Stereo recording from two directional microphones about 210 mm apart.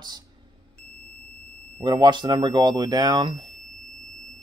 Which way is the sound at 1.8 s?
20° right (ahead or behind).